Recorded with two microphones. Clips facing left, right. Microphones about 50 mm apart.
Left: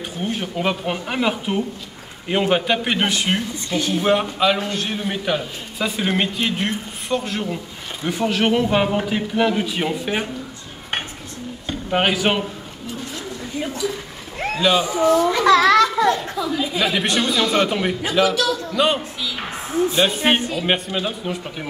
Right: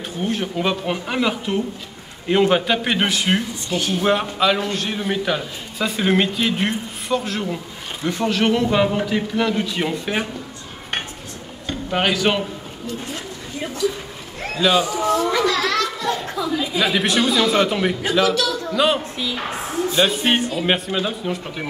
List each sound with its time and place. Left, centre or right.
0.2 s a man's voice: centre
11.6 s speech: centre
14.8 s speech: left
15.1 s a man's voice: centre
15.4 s a child's voice: left
16.1 s a man's voice: centre
19.1 s a woman's voice: right
20.2 s a man's voice: centre